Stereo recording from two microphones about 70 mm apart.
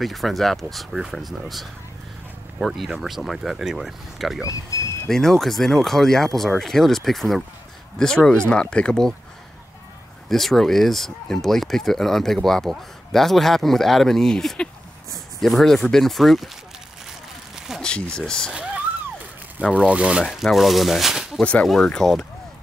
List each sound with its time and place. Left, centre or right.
0.0 s speech: centre
4.5 s speech: left
5.0 s speech: centre
10.3 s speech: centre
17.8 s speech: centre
19.9 s speech: centre
20.3 s speech: centre
21.4 s speech: centre
21.6 s speech: centre